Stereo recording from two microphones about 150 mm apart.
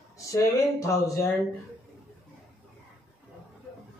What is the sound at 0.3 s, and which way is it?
Speech, 20° left (ahead or behind).